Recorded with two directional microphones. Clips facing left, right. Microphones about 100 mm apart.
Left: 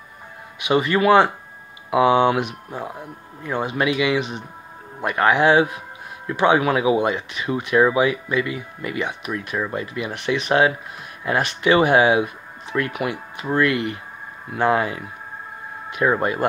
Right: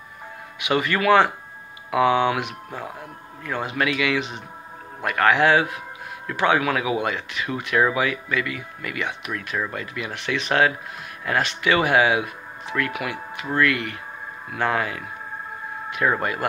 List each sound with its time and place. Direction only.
0.6 s speech: 20° left (ahead or behind)